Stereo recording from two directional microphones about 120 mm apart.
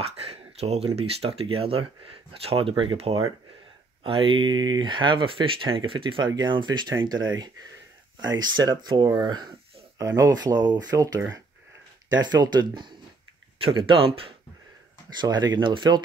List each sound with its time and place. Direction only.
0.0 s speech: 55° right (ahead or behind)
4.0 s speech: 45° right (ahead or behind)
12.1 s speech: 35° right (ahead or behind)
15.1 s speech: 35° right (ahead or behind)